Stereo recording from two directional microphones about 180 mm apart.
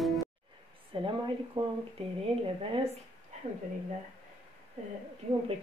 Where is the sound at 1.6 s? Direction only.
25° right (ahead or behind).